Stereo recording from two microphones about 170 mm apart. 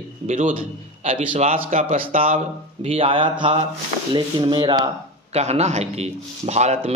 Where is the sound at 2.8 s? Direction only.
35° right (ahead or behind).